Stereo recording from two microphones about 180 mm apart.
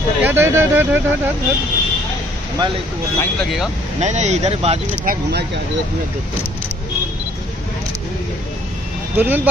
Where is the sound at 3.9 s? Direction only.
40° right (ahead or behind).